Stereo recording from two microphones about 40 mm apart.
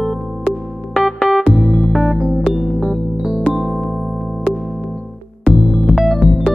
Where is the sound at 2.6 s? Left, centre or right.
Centre.